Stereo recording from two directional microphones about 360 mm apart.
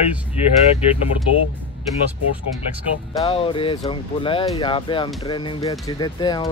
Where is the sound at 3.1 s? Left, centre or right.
Centre.